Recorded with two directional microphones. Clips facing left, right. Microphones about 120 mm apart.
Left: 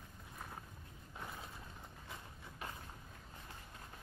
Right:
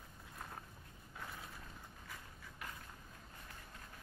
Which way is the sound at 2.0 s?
25° left (ahead or behind).